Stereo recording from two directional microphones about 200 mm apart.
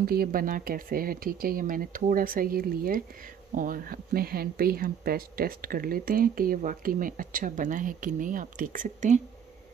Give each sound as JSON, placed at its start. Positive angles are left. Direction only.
{"t": 0.0, "sound": "speech", "side_deg": -50}